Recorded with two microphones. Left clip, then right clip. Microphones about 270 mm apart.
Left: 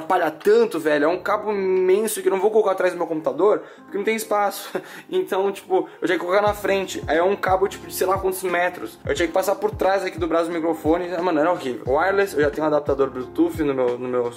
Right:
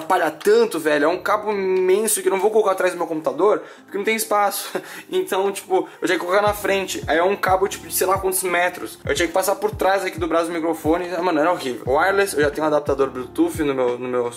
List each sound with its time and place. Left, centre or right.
0.1 s a man's voice: centre
3.0 s speech: left
3.4 s a man's voice: centre